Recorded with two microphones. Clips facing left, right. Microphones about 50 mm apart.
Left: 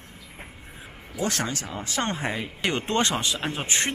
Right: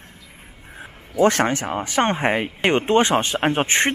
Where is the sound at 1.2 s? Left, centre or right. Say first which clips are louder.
Right 11 dB; right.